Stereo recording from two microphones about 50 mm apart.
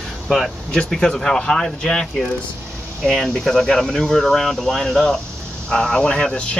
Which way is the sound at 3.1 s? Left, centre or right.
Centre.